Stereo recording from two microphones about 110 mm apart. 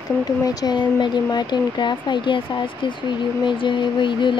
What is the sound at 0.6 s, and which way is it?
Speech, 40° left (ahead or behind).